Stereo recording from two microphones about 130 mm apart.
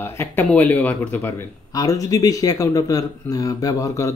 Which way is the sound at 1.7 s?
25° left (ahead or behind).